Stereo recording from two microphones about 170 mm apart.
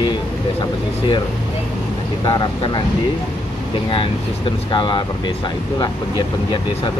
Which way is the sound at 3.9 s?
30° left (ahead or behind).